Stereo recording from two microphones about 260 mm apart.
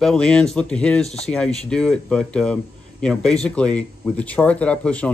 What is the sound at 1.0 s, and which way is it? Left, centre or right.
Speech, left.